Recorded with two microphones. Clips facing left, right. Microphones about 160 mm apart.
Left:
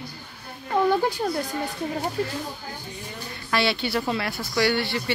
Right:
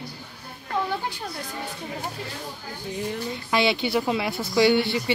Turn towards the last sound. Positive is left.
turn(degrees=-20)  # may be behind; listen again after turning